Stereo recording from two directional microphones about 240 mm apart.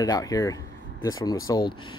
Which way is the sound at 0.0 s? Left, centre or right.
Centre.